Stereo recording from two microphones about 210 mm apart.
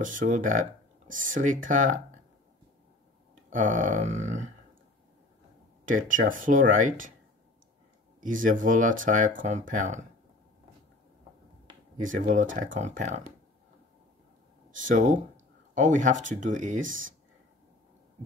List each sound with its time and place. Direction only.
0.0 s speech: 40° right (ahead or behind)
3.4 s speech: 40° right (ahead or behind)
5.9 s speech: 40° right (ahead or behind)
8.2 s speech: 40° right (ahead or behind)
12.1 s speech: 40° right (ahead or behind)
14.8 s speech: 40° right (ahead or behind)
16.8 s speech: 65° right (ahead or behind)